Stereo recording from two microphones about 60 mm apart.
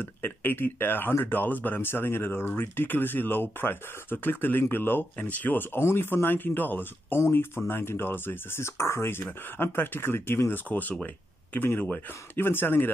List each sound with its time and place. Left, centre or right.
0.0 s speech: left
7.2 s speech: left
10.7 s speech: left